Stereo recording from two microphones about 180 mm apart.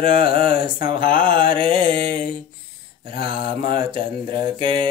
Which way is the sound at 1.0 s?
30° right (ahead or behind).